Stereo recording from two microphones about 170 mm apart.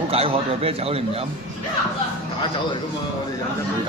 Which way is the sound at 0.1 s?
35° right (ahead or behind).